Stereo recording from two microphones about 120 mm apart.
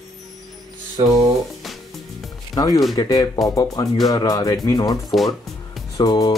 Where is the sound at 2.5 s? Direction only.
30° left (ahead or behind).